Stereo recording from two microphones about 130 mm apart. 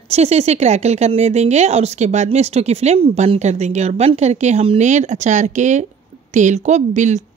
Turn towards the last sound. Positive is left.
turn(degrees=-65)  # may be behind; listen again after turning